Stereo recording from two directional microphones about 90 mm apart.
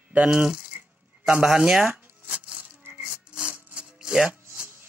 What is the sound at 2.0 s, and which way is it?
Shuffling cards, 15° right (ahead or behind).